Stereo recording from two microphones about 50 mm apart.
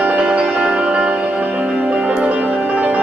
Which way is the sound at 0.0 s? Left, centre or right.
Right.